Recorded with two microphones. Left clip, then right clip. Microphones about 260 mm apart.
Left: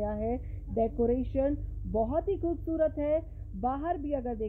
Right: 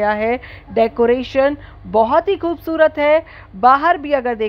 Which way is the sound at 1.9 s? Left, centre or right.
Right.